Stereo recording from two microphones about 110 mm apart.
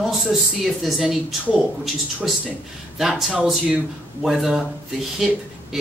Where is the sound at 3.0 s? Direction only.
5° right (ahead or behind).